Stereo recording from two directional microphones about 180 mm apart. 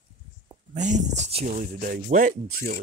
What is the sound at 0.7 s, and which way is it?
Speech, 40° right (ahead or behind).